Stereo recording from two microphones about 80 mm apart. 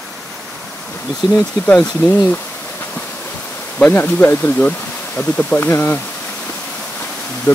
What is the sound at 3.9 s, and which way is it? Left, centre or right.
Speech, left.